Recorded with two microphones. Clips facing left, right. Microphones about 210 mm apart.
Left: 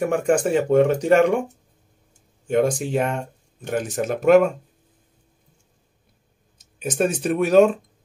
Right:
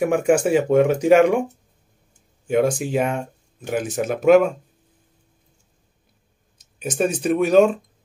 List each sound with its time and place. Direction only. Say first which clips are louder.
0.0 s speech: right 2 dB; 10° right (ahead or behind)
2.4 s speech: right 1 dB; 5° right (ahead or behind)
6.6 s speech: even; centre (ahead or behind)